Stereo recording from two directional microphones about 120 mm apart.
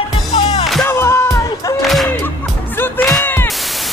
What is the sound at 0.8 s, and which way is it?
Music, 20° left (ahead or behind).